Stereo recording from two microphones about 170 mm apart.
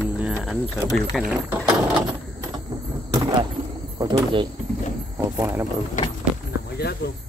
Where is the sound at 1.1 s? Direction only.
Centre (ahead or behind).